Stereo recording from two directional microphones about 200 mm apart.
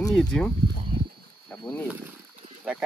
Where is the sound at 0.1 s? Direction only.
5° left (ahead or behind).